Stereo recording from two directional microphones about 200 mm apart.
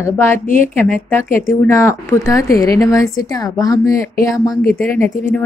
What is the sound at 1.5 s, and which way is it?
A woman's voice, 15° left (ahead or behind).